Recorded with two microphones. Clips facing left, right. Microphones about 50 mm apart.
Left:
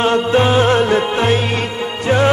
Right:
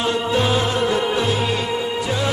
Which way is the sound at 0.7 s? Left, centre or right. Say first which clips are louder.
Left 6 dB; left.